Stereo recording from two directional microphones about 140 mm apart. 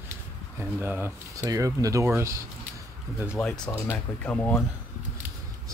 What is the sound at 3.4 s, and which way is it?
Speech, 5° left (ahead or behind).